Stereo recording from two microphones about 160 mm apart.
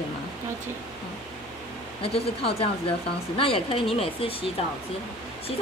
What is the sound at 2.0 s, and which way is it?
A woman's voice, 35° left (ahead or behind).